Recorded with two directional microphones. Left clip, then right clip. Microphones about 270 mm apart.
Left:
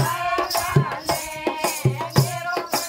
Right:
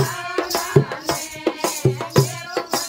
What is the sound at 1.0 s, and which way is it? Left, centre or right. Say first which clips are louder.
Music: right 1 dB; centre.